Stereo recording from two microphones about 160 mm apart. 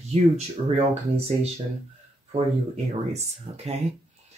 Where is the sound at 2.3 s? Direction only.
40° right (ahead or behind).